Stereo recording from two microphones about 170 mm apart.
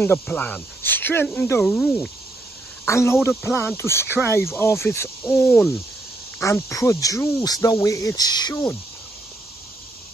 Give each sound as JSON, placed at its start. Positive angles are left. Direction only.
{"t": 0.0, "sound": "speech", "side_deg": 10}